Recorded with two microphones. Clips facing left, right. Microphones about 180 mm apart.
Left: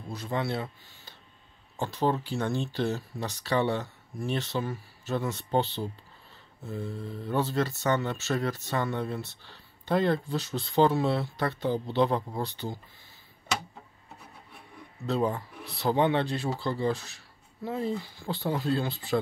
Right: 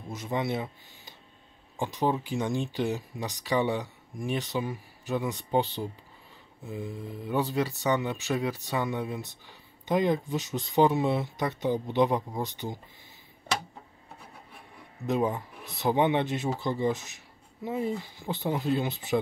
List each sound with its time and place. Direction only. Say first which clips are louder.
0.1 s speech: right 1 dB; 20° right (ahead or behind)
15.0 s speech: right 1 dB; 15° right (ahead or behind)